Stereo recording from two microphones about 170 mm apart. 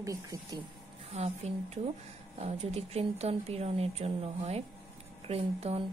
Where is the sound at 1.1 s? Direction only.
40° right (ahead or behind).